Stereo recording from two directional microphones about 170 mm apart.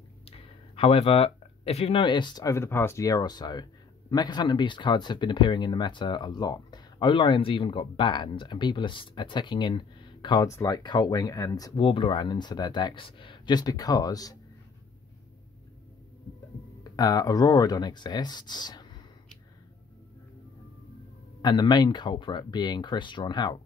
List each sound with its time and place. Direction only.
0.2 s speech: 35° left (ahead or behind)
16.9 s speech: 20° left (ahead or behind)
21.4 s speech: 25° left (ahead or behind)